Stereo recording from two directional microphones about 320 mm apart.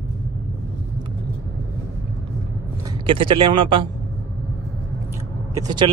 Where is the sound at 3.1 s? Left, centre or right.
Centre.